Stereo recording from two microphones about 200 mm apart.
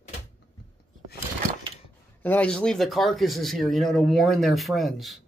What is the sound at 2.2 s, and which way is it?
Speech, 5° left (ahead or behind).